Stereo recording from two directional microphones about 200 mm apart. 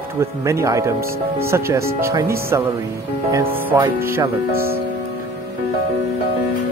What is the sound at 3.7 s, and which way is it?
Speech, 15° right (ahead or behind).